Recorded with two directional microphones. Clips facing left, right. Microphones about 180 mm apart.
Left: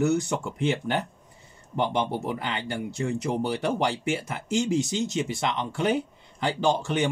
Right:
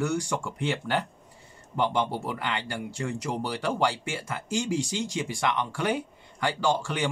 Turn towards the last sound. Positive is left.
turn(degrees=20)  # may be behind; listen again after turning